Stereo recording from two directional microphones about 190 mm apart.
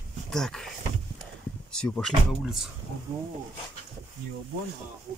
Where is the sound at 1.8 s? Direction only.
5° left (ahead or behind).